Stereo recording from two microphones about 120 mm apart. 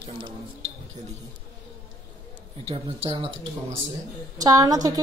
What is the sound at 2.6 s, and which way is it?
Speech, 45° right (ahead or behind).